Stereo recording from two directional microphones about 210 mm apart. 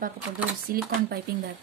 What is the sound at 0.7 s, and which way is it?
Speech, 45° right (ahead or behind).